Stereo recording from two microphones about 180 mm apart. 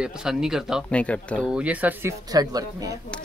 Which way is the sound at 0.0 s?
5° right (ahead or behind).